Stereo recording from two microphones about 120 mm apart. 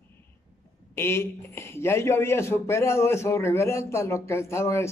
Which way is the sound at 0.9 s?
20° left (ahead or behind).